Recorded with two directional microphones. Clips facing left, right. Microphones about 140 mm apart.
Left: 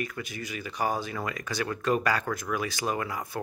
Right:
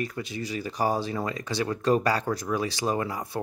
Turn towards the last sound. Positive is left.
turn(degrees=-30)  # may be behind; listen again after turning